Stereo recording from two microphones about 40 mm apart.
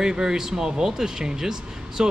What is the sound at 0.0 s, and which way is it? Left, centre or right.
Speech, centre.